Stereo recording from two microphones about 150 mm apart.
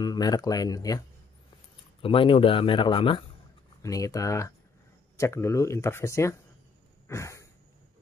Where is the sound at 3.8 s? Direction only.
20° left (ahead or behind).